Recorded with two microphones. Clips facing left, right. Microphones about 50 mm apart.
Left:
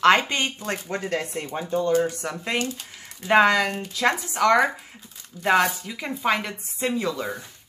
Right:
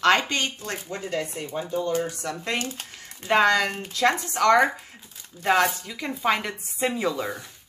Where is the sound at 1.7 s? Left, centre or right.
Left.